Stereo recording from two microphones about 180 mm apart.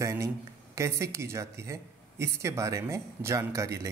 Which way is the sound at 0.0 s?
15° right (ahead or behind).